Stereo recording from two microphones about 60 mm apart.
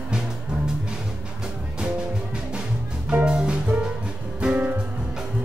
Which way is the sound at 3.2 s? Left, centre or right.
Centre.